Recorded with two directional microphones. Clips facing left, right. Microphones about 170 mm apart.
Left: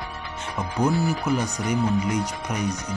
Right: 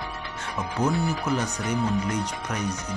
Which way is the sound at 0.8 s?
5° left (ahead or behind).